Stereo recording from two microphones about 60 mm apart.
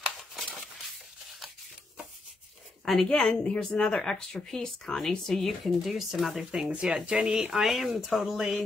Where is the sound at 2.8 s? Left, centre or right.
Centre.